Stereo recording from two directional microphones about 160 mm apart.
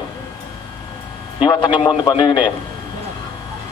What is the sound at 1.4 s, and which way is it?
A man's voice, 30° left (ahead or behind).